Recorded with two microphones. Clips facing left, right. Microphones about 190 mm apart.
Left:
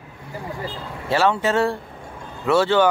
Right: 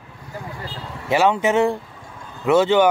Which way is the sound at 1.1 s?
15° right (ahead or behind).